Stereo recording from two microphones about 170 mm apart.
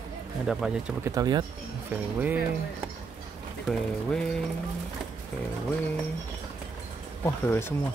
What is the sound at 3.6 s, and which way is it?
Speech, 5° left (ahead or behind).